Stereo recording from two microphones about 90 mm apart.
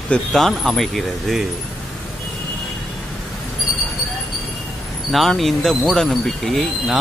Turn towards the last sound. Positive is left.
turn(degrees=0)  # may be behind; listen again after turning